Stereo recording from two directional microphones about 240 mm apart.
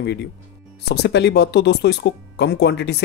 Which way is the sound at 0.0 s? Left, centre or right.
Left.